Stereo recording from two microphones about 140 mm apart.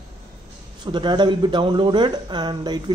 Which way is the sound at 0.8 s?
35° right (ahead or behind).